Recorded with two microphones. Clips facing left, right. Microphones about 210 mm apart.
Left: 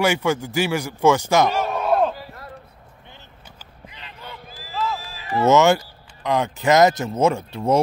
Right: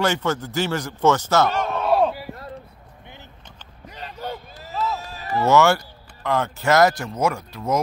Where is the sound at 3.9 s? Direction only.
45° right (ahead or behind).